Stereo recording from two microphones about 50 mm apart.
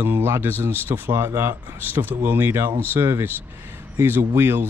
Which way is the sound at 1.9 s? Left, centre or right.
Right.